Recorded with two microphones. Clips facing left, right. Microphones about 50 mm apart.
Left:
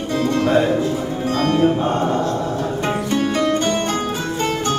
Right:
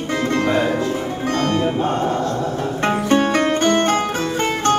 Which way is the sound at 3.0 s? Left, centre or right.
Right.